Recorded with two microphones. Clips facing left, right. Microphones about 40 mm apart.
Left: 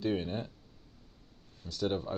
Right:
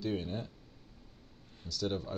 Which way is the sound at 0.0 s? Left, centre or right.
Left.